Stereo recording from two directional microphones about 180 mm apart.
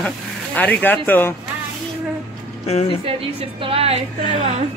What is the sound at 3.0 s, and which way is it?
A woman's voice, 30° right (ahead or behind).